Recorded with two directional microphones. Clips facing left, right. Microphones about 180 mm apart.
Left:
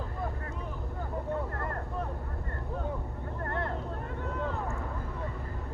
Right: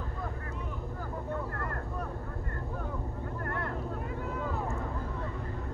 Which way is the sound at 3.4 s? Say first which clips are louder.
Left 3 dB; 25° left (ahead or behind).